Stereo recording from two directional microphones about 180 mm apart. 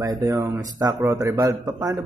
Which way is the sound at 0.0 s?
20° right (ahead or behind).